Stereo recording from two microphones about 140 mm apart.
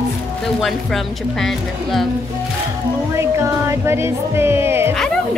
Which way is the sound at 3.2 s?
20° right (ahead or behind).